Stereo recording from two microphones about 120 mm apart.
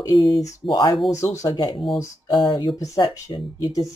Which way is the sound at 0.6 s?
40° left (ahead or behind).